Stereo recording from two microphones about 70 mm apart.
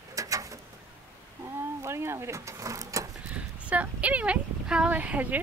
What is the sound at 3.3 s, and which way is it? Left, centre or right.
A woman's voice, centre.